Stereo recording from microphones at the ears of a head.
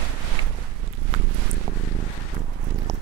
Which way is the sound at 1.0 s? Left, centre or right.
Right.